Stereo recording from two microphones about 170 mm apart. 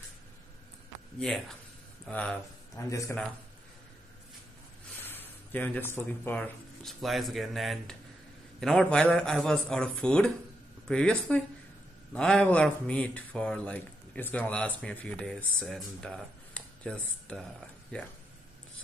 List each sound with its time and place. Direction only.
2.0 s speech: 5° left (ahead or behind)
2.9 s speech: 20° left (ahead or behind)
5.0 s a man's voice: 10° left (ahead or behind)